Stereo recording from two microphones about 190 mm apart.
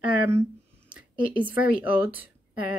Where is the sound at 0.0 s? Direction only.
10° right (ahead or behind).